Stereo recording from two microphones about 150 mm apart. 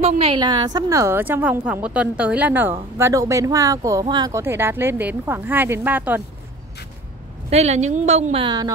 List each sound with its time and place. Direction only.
0.2 s a woman's voice: 30° right (ahead or behind); by 6.2 s 10° right (ahead or behind)
7.4 s a woman's voice: 45° right (ahead or behind); by 8.7 s 30° right (ahead or behind)